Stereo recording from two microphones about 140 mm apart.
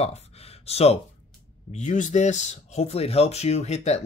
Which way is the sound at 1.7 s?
60° left (ahead or behind).